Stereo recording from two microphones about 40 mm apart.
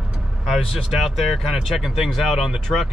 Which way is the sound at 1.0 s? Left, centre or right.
Centre.